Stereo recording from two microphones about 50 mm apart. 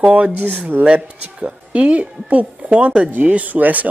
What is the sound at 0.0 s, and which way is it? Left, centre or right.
Speech, right.